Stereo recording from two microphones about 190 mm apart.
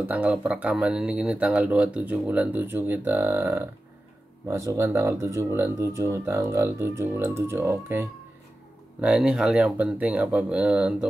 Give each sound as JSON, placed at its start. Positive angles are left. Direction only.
{"t": 0.1, "sound": "speech", "side_deg": -10}
{"t": 9.0, "sound": "speech", "side_deg": -5}